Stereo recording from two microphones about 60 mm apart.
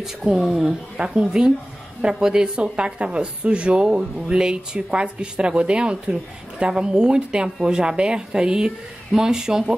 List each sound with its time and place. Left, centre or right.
0.0 s a woman's voice: centre
0.9 s a woman's voice: centre